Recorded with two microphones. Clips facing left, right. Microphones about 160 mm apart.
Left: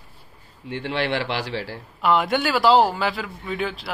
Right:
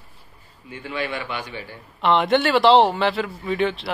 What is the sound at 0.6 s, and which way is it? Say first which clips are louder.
Speech: left 3 dB; 75° left (ahead or behind).